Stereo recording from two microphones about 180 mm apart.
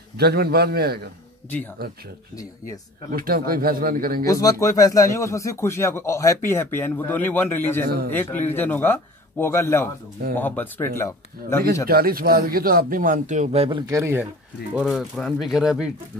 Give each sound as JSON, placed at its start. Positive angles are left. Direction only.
{"t": 0.2, "sound": "speech", "side_deg": -60}
{"t": 2.3, "sound": "speech", "side_deg": 20}
{"t": 3.1, "sound": "speech", "side_deg": -55}
{"t": 4.3, "sound": "speech", "side_deg": 20}
{"t": 7.8, "sound": "speech", "side_deg": -55}
{"t": 8.1, "sound": "speech", "side_deg": 10}
{"t": 11.9, "sound": "speech", "side_deg": -55}
{"t": 14.8, "sound": "speech", "side_deg": 0}